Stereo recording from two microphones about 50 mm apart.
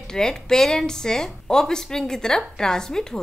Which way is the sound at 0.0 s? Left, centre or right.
Centre.